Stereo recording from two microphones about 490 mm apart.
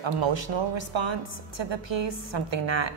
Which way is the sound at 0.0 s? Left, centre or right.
Right.